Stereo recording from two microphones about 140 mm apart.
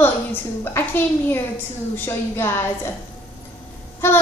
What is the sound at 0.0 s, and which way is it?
A woman's voice, 15° left (ahead or behind).